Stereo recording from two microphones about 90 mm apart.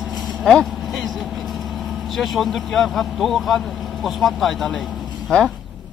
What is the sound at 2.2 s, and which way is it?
Speech, centre (ahead or behind).